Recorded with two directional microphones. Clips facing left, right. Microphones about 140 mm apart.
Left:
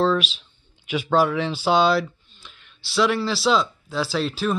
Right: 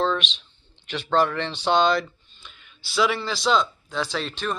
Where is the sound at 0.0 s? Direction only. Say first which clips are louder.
Left 4 dB; 5° left (ahead or behind).